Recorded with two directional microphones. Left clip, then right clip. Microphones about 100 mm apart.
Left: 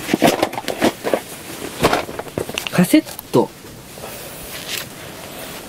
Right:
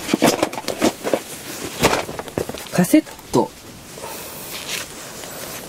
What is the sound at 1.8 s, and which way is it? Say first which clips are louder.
Walk: left 1 dB; 50° right (ahead or behind).